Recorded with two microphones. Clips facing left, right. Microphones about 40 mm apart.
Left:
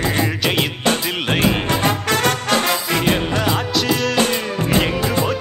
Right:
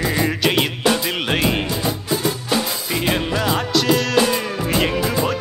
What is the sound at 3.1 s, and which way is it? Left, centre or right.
Music, centre.